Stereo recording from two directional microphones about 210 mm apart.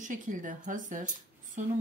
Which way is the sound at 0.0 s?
40° right (ahead or behind).